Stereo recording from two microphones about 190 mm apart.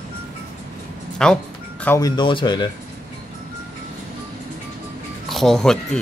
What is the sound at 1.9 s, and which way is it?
Speech, 20° left (ahead or behind).